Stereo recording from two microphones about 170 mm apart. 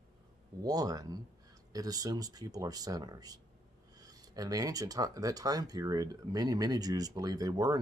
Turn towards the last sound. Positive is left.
turn(degrees=-20)  # may be behind; listen again after turning